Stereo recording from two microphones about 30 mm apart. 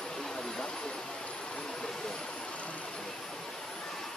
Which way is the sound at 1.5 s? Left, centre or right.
Left.